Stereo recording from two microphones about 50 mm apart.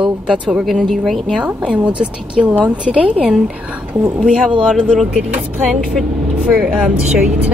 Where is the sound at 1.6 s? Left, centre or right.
Right.